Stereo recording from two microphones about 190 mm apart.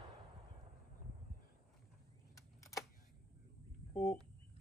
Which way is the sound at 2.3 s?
15° left (ahead or behind).